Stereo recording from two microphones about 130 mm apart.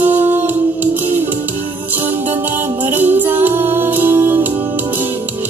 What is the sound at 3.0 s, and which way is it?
Music, 15° right (ahead or behind).